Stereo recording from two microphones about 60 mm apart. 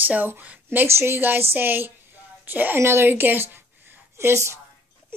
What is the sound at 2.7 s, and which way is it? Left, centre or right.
A woman's voice, right.